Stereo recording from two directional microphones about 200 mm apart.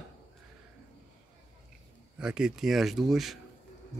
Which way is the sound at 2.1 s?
5° right (ahead or behind).